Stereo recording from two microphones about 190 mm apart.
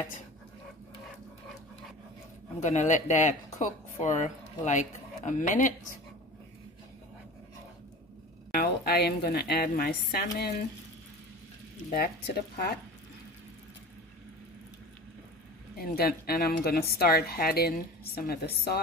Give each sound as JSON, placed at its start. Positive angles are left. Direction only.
{"t": 2.6, "sound": "a man's voice", "side_deg": 40}
{"t": 8.5, "sound": "a woman's voice", "side_deg": 55}
{"t": 11.9, "sound": "a woman's voice", "side_deg": 55}
{"t": 15.8, "sound": "speech", "side_deg": 50}